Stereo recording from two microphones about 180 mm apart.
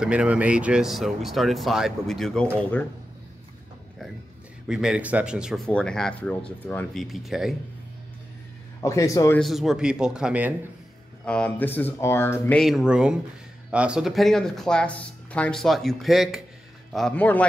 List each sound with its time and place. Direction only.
0.0 s speech: 5° right (ahead or behind)
4.6 s speech: 5° right (ahead or behind)
8.8 s speech: 20° left (ahead or behind)
9.4 s speech: centre (ahead or behind)
11.2 s speech: 5° left (ahead or behind)
12.6 s speech: 5° right (ahead or behind)